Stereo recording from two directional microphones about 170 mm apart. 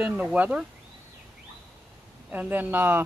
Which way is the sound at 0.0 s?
10° right (ahead or behind).